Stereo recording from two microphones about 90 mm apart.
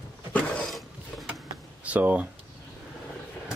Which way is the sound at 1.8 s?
15° right (ahead or behind).